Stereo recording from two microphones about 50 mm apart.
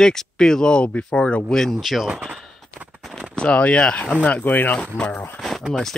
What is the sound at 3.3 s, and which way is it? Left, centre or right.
Speech, left.